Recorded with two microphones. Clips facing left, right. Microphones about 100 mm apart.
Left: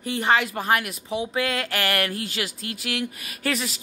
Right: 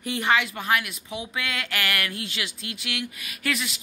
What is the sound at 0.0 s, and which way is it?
Speech, 35° left (ahead or behind).